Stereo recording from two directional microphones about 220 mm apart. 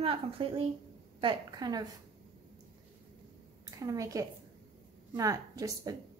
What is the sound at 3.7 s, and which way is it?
A woman's voice, 15° right (ahead or behind).